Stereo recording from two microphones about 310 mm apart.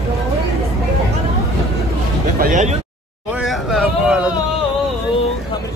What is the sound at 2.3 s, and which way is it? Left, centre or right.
Speech, right.